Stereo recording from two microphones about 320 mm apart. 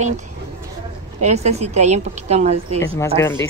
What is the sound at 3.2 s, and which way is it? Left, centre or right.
Speech, centre.